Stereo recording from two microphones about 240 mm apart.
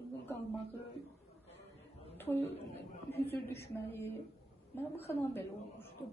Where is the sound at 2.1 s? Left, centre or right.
Centre.